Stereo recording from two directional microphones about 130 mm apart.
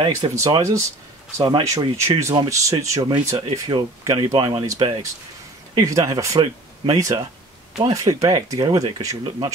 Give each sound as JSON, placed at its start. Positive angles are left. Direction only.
{"t": 0.5, "sound": "speech", "side_deg": -25}